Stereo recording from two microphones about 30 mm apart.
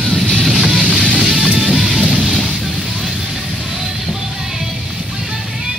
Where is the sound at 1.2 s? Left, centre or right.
Centre.